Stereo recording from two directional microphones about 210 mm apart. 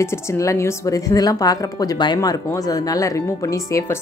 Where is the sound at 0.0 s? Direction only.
10° left (ahead or behind).